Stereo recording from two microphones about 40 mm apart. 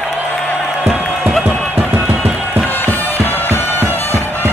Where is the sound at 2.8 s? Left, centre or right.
Left.